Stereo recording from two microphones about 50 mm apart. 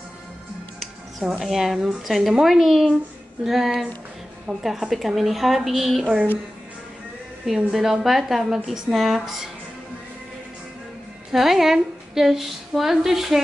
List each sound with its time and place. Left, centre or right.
1.4 s a woman's voice: centre
7.4 s a woman's voice: centre
11.3 s a woman's voice: centre